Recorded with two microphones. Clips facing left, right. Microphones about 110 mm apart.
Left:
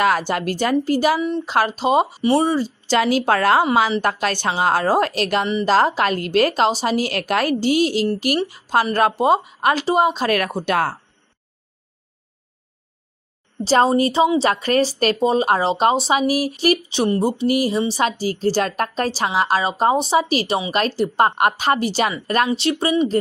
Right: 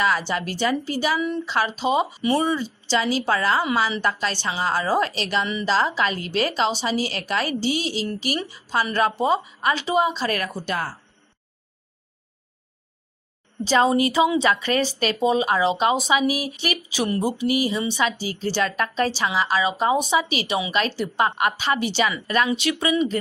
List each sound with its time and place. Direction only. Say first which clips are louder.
0.0 s a woman's voice: left 4 dB; 50° left (ahead or behind)
3.0 s a woman's voice: left 5 dB; 55° left (ahead or behind)
13.7 s speech: left 3 dB; 35° left (ahead or behind)
14.5 s speech: left 4 dB; 40° left (ahead or behind)
17.4 s speech: left 4 dB; 45° left (ahead or behind)